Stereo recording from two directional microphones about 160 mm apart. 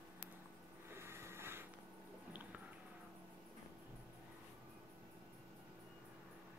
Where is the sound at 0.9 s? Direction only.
15° right (ahead or behind).